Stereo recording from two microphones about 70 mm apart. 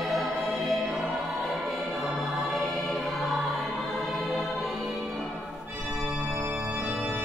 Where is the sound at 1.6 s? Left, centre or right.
Centre.